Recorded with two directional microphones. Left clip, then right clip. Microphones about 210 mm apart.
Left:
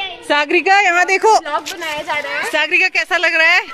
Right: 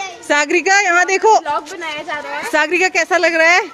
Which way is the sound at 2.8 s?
15° right (ahead or behind).